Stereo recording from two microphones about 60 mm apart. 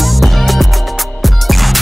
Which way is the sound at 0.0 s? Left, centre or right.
Centre.